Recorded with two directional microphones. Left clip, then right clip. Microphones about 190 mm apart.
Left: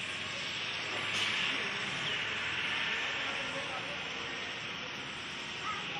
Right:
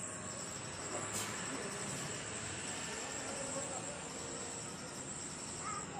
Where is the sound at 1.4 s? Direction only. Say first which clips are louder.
Left 10 dB; 35° right (ahead or behind).